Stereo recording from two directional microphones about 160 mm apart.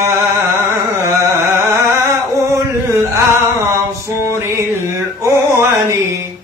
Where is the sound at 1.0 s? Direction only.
15° right (ahead or behind).